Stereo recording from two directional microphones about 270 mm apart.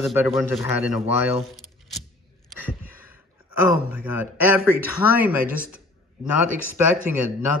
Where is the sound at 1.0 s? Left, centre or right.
Right.